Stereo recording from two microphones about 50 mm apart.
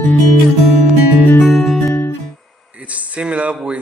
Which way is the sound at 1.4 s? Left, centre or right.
Centre.